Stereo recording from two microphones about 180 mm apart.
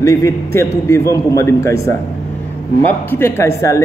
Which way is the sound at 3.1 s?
15° left (ahead or behind).